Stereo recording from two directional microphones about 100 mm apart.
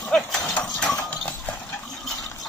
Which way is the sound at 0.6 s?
5° left (ahead or behind).